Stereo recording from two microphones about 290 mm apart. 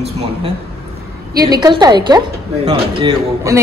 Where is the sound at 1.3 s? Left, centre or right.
Centre.